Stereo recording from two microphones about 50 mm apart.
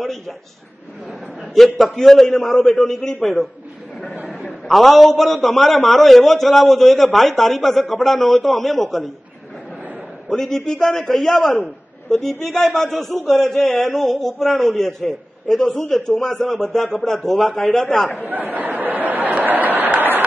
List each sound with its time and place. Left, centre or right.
1.6 s a man's voice: centre
4.6 s a man's voice: centre
10.3 s a man's voice: centre
18.3 s a sound: right